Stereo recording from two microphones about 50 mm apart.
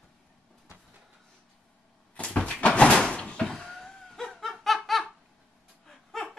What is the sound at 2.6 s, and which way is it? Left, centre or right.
Door, left.